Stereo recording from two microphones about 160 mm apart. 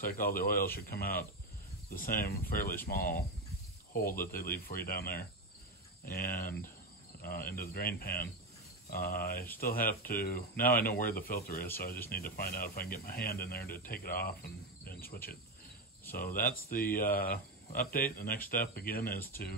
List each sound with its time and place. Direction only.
0.0 s speech: 65° left (ahead or behind)
13.8 s cricket: 65° left (ahead or behind)
16.1 s speech: 65° left (ahead or behind)